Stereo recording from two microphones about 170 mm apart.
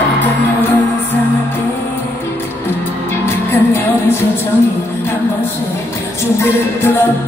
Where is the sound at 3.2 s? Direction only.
15° left (ahead or behind).